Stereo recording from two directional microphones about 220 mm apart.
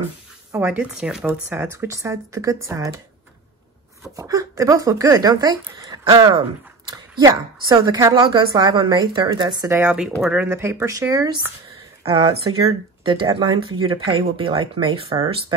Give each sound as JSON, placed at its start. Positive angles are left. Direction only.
{"t": 0.5, "sound": "speech", "side_deg": -10}
{"t": 4.2, "sound": "a woman's voice", "side_deg": -15}